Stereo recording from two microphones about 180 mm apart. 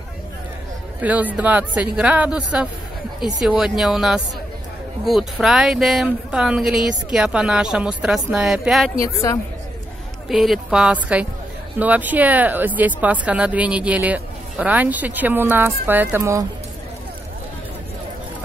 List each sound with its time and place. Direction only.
1.0 s speech: 10° right (ahead or behind)
9.0 s a woman's voice: 20° left (ahead or behind)
10.2 s speech: centre (ahead or behind)